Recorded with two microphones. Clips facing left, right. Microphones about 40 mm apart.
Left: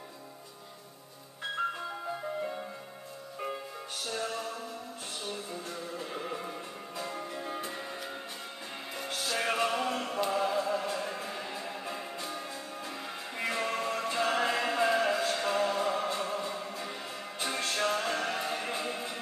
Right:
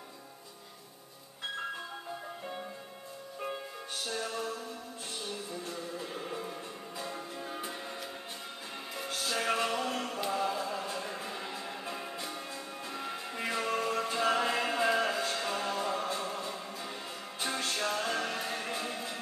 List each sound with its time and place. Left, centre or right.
4.1 s music: left
5.7 s music: left
9.4 s music: left
10.3 s chant: left
10.9 s music: left
11.2 s music: centre
12.2 s music: left
12.9 s music: centre
13.5 s music: centre